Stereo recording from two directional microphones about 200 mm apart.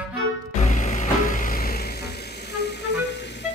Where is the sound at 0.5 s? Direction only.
35° left (ahead or behind); by 3.2 s 60° left (ahead or behind).